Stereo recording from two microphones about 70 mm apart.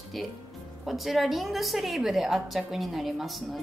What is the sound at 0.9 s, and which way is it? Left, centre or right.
A woman's voice, centre.